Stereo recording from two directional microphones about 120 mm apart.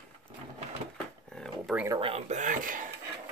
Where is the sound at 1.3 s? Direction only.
5° left (ahead or behind).